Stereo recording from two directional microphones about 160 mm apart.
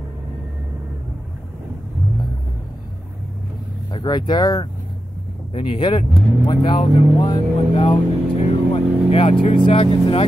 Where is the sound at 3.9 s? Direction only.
25° left (ahead or behind).